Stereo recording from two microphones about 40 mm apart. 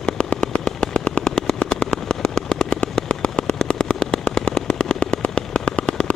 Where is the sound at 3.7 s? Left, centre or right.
Centre.